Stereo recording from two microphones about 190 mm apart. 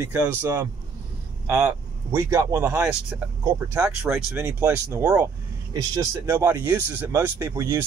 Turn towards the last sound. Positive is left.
turn(degrees=-15)  # may be behind; listen again after turning